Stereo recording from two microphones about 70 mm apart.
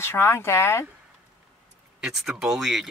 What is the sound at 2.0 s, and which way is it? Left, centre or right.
Speech, centre.